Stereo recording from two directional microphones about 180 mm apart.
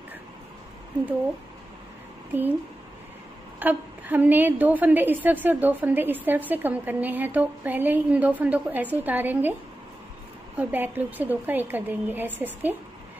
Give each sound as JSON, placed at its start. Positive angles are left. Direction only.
{"t": 3.5, "sound": "a woman's voice", "side_deg": -10}
{"t": 10.6, "sound": "a woman's voice", "side_deg": -10}